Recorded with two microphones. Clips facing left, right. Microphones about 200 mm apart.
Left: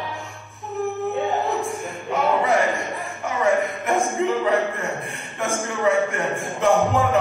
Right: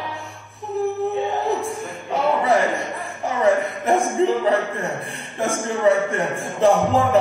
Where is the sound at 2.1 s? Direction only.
35° right (ahead or behind).